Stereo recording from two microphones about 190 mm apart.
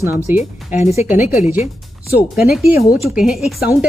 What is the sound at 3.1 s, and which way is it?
Speech, centre (ahead or behind).